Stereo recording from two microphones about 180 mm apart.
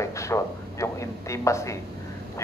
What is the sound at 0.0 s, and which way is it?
Speech, 15° left (ahead or behind).